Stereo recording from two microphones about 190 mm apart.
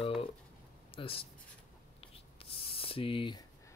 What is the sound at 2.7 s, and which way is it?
Spray, 30° left (ahead or behind).